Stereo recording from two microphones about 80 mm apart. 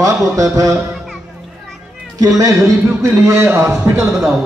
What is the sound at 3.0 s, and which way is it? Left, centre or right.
Speech, right.